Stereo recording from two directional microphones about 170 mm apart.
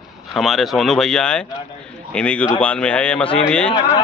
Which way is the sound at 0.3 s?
Centre (ahead or behind).